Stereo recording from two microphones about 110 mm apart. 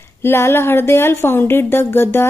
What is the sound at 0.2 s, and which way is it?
A woman's voice, 20° left (ahead or behind).